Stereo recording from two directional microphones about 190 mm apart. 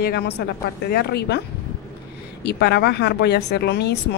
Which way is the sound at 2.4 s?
60° left (ahead or behind).